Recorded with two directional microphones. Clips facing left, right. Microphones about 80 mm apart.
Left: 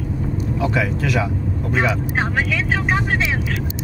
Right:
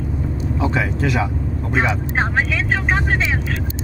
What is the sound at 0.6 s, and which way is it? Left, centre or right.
Speech, right.